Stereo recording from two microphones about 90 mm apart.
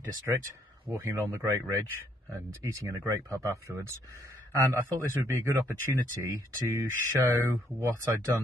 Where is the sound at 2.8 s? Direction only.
35° right (ahead or behind).